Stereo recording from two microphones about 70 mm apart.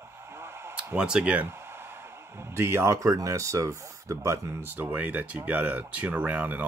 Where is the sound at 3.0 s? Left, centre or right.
Right.